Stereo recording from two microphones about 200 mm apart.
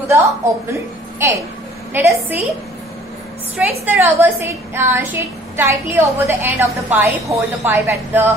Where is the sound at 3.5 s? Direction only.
10° right (ahead or behind).